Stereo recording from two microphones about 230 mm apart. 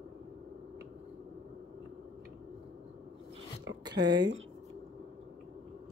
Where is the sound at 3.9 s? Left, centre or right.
Centre.